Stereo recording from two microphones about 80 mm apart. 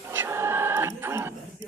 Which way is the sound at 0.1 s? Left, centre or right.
Right.